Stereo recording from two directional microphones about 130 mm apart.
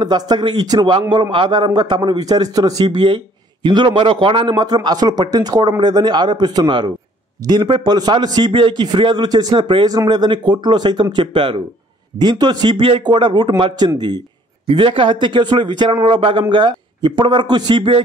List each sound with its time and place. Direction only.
0.0 s a man's voice: 35° right (ahead or behind)